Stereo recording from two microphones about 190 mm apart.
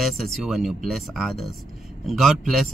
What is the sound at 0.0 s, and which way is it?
Speech, centre (ahead or behind).